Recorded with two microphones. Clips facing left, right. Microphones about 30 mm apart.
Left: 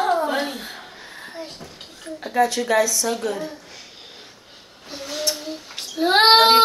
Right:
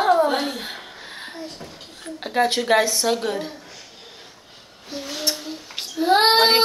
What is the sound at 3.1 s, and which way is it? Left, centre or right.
Speech, right.